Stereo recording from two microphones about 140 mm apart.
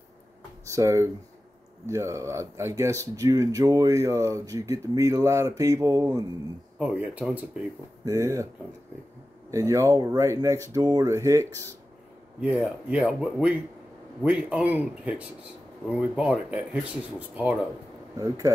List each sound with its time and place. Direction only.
0.7 s speech: 20° right (ahead or behind)
6.8 s speech: 10° right (ahead or behind)
8.0 s speech: 25° right (ahead or behind)
9.5 s speech: 25° right (ahead or behind)
12.4 s speech: 10° right (ahead or behind)
18.1 s speech: 25° right (ahead or behind)